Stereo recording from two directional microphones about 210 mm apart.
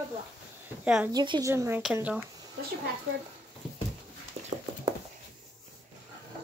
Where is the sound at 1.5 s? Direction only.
10° right (ahead or behind).